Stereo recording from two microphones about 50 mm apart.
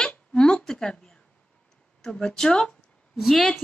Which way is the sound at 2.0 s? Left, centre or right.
Centre.